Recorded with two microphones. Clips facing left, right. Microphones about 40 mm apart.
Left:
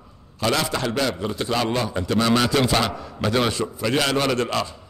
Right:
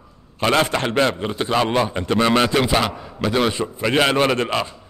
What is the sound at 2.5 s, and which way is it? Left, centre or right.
Speech, centre.